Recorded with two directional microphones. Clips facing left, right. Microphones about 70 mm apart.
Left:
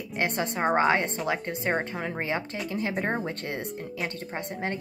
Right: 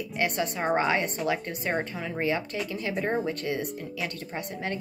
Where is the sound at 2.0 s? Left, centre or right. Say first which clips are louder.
Left 1 dB; left.